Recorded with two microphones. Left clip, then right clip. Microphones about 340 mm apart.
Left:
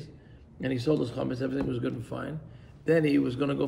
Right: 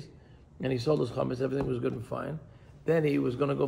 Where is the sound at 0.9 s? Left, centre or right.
Centre.